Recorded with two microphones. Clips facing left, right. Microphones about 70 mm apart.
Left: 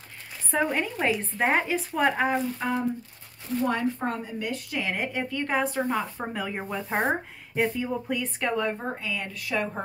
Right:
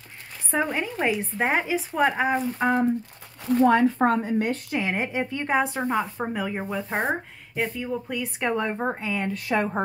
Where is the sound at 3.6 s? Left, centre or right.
Right.